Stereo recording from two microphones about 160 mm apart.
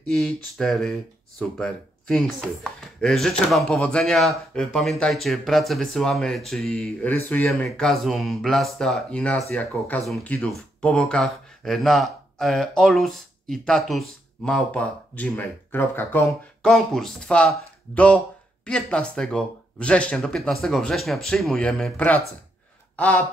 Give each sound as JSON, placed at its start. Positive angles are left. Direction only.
{"t": 0.0, "sound": "speech", "side_deg": 5}
{"t": 16.6, "sound": "speech", "side_deg": 0}